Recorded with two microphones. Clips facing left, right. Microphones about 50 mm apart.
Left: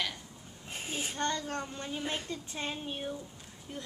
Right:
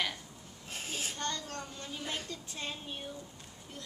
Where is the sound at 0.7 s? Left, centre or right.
Left.